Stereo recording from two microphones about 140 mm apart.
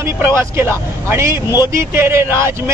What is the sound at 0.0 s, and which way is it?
Speech, 20° right (ahead or behind).